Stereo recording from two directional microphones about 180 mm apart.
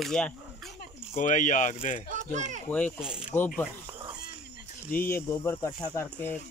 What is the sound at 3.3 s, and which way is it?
Speech, 10° left (ahead or behind).